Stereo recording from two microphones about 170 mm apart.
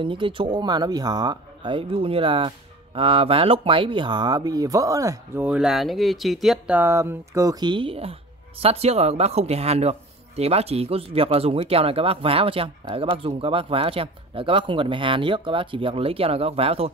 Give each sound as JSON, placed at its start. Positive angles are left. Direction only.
{"t": 0.0, "sound": "speech", "side_deg": -30}
{"t": 6.8, "sound": "speech", "side_deg": -15}